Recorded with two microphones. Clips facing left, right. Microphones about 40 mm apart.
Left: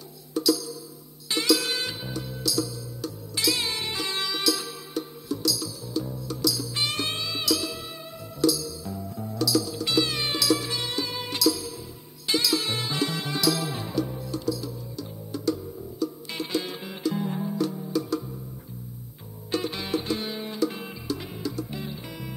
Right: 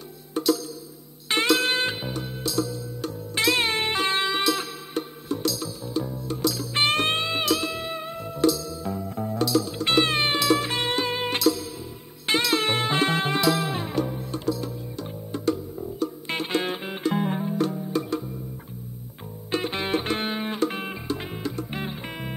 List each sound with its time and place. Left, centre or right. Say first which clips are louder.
0.3 s music: right 1 dB; right
19.5 s music: right 2 dB; right